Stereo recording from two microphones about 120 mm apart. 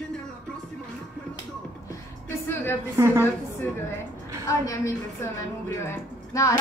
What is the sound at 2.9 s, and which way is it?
Speech, 20° right (ahead or behind).